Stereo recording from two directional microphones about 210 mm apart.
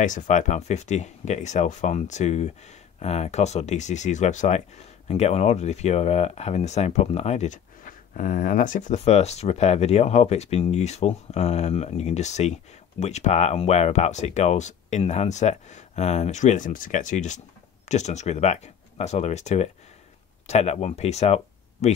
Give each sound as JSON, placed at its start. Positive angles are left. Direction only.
{"t": 0.0, "sound": "speech", "side_deg": 35}